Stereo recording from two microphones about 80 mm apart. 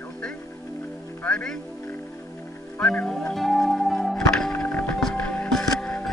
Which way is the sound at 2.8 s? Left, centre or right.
Centre.